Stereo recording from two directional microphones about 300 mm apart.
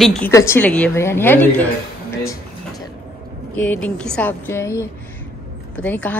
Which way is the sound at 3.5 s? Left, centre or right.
Centre.